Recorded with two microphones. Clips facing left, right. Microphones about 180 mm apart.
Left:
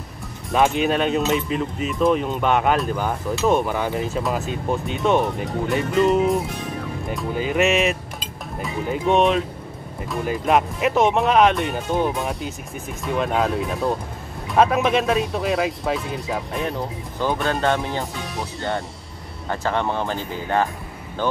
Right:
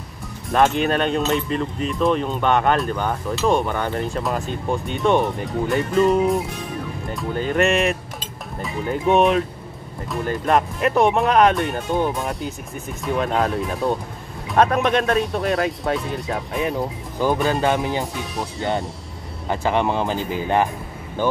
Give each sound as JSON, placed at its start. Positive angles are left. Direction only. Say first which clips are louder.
{"t": 0.5, "sound": "speech", "louder": "right 1 dB", "side_deg": 0}